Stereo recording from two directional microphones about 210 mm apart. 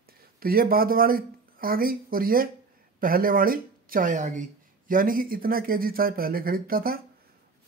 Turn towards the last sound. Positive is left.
turn(degrees=-45)  # may be behind; listen again after turning